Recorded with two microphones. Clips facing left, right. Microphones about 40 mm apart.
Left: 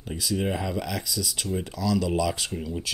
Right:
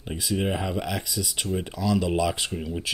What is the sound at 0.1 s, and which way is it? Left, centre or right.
Speech, centre.